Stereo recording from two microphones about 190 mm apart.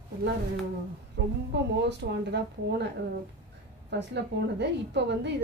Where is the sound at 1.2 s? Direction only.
65° right (ahead or behind).